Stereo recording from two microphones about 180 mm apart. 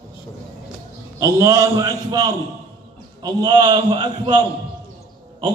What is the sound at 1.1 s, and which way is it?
A man's voice, 20° right (ahead or behind).